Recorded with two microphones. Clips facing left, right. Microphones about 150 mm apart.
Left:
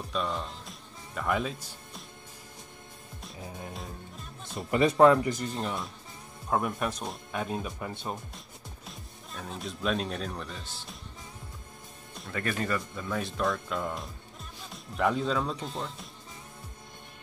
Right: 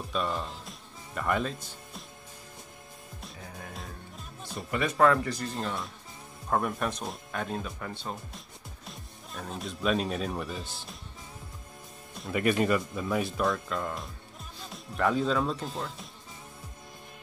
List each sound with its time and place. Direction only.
0.1 s speech: centre (ahead or behind)
3.7 s music: centre (ahead or behind)
4.6 s speech: 25° left (ahead or behind)
5.5 s speech: centre (ahead or behind)
8.8 s speech: centre (ahead or behind)
12.3 s speech: 15° right (ahead or behind)